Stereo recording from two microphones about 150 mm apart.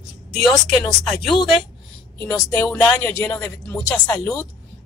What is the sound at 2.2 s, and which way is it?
Speech, 20° left (ahead or behind).